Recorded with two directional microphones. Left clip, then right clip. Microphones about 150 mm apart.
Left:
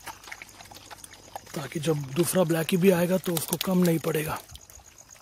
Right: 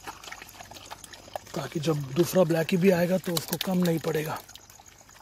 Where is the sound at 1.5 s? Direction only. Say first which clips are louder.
Left 1 dB; 20° left (ahead or behind).